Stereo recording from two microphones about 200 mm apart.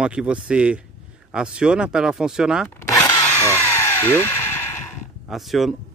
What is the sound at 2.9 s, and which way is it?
Drill, 15° left (ahead or behind).